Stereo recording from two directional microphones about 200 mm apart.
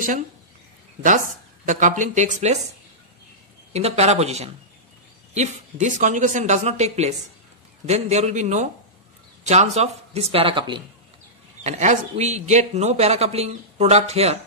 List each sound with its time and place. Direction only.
1.7 s a man's voice: 40° right (ahead or behind)
3.7 s a man's voice: 30° right (ahead or behind)
11.6 s a man's voice: 35° right (ahead or behind)